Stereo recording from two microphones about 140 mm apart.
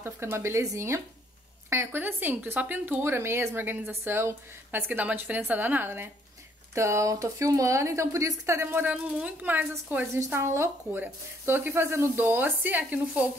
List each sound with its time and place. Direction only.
0.0 s speech: 20° right (ahead or behind)